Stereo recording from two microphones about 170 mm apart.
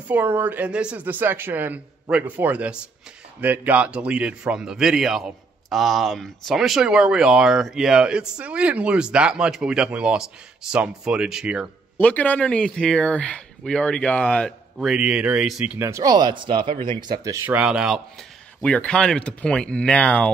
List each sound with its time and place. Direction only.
0.1 s speech: 10° right (ahead or behind)
12.0 s speech: 10° left (ahead or behind); by 16.7 s 30° right (ahead or behind)
16.7 s speech: 15° left (ahead or behind)
17.1 s speech: 20° right (ahead or behind)
18.6 s speech: 5° left (ahead or behind)